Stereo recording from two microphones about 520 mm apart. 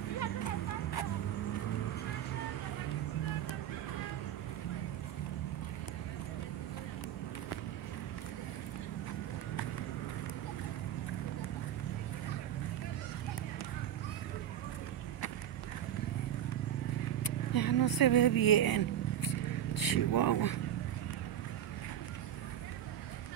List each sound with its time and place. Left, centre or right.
17.2 s vehicle: left